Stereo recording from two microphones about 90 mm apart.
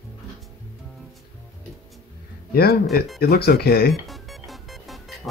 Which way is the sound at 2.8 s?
Centre (ahead or behind).